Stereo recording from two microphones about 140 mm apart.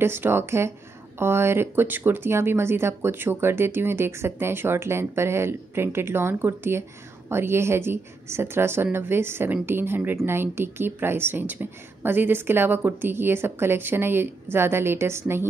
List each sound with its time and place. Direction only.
0.0 s speech: 15° right (ahead or behind)